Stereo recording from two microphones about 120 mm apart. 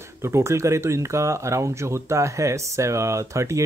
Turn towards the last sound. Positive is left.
turn(degrees=-25)  # may be behind; listen again after turning